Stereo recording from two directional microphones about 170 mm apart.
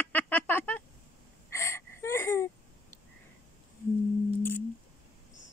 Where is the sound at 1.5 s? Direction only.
15° left (ahead or behind).